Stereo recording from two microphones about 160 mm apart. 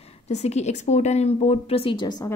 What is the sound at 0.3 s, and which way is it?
Speech, 45° left (ahead or behind).